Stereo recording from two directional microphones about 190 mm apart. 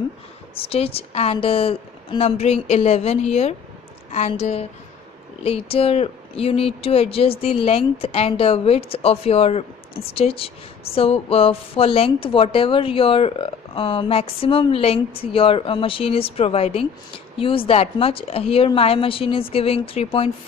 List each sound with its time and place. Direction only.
0.6 s a woman's voice: 30° left (ahead or behind)